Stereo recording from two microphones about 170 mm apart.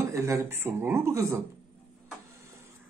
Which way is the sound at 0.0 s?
20° right (ahead or behind).